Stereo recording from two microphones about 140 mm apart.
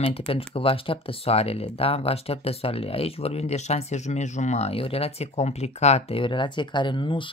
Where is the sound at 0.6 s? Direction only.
40° left (ahead or behind).